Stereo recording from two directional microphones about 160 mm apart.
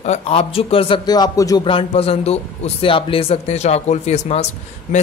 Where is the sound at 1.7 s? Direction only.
35° left (ahead or behind).